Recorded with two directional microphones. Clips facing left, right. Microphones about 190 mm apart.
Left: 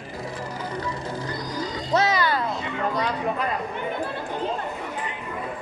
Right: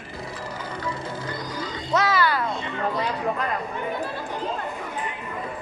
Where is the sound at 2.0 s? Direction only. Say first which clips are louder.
Right 2 dB; 20° left (ahead or behind).